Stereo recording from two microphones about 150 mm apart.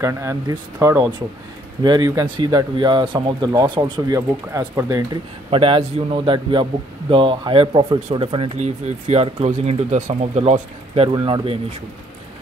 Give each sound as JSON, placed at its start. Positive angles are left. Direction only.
{"t": 0.0, "sound": "a man's voice", "side_deg": -20}
{"t": 4.5, "sound": "speech", "side_deg": -20}
{"t": 5.5, "sound": "a man's voice", "side_deg": -35}
{"t": 11.1, "sound": "a man's voice", "side_deg": -30}